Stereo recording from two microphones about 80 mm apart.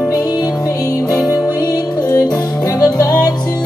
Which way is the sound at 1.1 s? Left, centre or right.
Left.